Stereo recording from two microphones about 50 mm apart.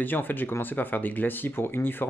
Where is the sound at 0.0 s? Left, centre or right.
Left.